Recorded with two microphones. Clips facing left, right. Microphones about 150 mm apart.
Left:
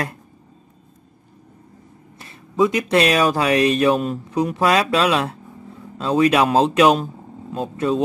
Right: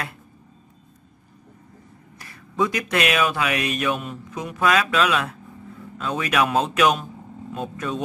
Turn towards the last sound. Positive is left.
turn(degrees=30)  # may be behind; listen again after turning